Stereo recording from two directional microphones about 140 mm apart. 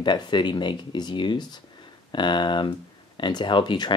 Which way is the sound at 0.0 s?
35° left (ahead or behind).